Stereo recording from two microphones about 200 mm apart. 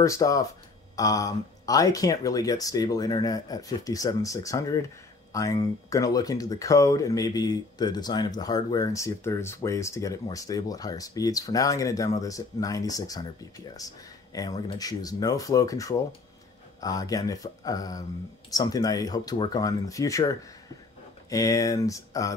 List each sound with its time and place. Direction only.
0.0 s speech: 15° left (ahead or behind)